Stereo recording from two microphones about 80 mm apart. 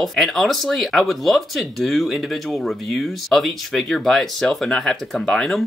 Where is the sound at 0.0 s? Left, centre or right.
Centre.